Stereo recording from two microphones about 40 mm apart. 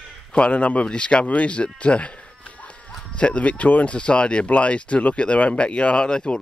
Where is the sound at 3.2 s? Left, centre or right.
Left.